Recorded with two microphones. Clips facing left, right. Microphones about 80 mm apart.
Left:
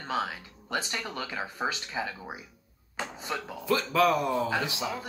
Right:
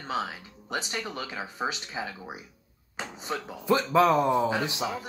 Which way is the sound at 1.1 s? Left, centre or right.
Right.